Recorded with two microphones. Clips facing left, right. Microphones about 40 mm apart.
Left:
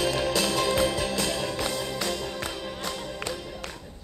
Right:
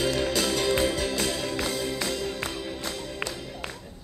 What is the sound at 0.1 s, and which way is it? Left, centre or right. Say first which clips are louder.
Music: even; centre.